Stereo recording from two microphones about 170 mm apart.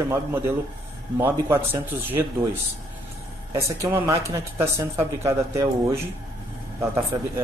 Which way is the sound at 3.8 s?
20° right (ahead or behind).